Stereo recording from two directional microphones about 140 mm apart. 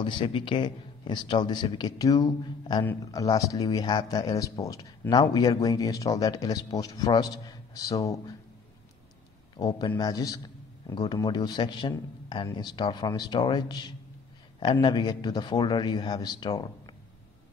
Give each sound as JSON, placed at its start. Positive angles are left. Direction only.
{"t": 0.0, "sound": "speech", "side_deg": 35}
{"t": 9.6, "sound": "speech", "side_deg": 30}